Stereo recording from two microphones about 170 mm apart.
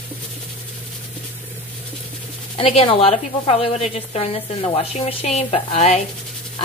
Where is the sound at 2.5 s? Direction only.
35° left (ahead or behind).